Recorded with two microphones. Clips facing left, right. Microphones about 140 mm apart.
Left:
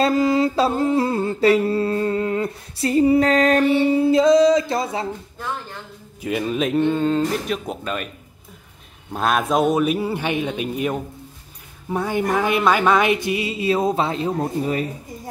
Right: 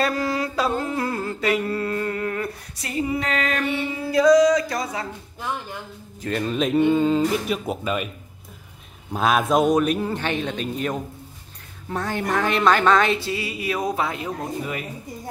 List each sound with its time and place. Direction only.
0.0 s a sound: 25° left (ahead or behind)
2.9 s music: 35° left (ahead or behind)
6.2 s speech: 5° left (ahead or behind)
9.1 s speech: centre (ahead or behind); by 14.9 s 35° left (ahead or behind)